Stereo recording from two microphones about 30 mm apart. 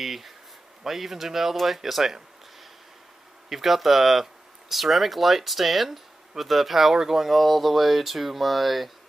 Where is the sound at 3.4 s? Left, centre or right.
Centre.